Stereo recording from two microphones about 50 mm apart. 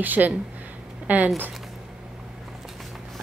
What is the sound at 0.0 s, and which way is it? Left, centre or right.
Speech, right.